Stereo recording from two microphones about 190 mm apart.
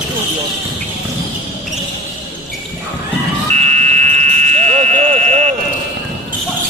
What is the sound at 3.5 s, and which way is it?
Buzzer, 40° right (ahead or behind).